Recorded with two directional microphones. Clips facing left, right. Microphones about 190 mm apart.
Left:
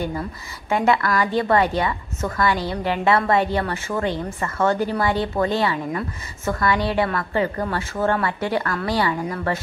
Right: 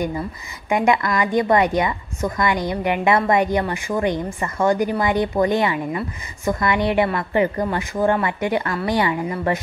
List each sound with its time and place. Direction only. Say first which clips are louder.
0.7 s a woman's voice: right 1 dB; 15° right (ahead or behind)